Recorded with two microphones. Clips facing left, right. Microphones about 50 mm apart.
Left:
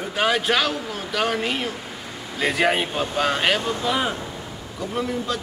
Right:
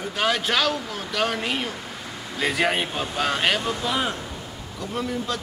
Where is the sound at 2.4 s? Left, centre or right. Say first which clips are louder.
Left 2 dB; centre.